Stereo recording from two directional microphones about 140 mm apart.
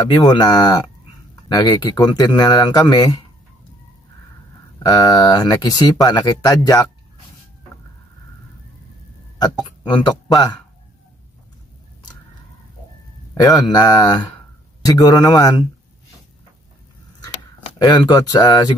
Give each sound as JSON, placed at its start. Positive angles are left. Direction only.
{"t": 0.1, "sound": "speech", "side_deg": 30}
{"t": 4.8, "sound": "speech", "side_deg": 25}
{"t": 10.0, "sound": "speech", "side_deg": 30}
{"t": 13.4, "sound": "speech", "side_deg": 30}
{"t": 17.7, "sound": "speech", "side_deg": 30}